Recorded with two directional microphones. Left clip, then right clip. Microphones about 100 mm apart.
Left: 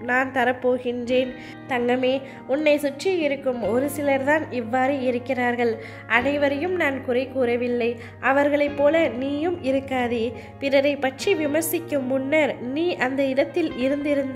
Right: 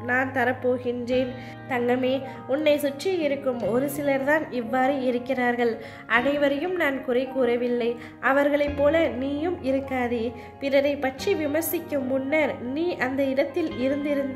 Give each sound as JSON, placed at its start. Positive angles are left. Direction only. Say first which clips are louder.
{"t": 0.0, "sound": "a woman's voice", "louder": "left 2 dB", "side_deg": 40}